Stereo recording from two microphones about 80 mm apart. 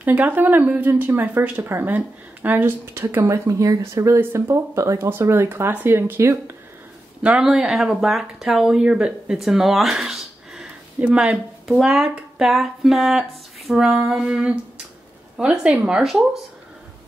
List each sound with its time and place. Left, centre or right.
0.0 s speech: right
3.3 s speech: right
7.2 s speech: centre
16.0 s speech: centre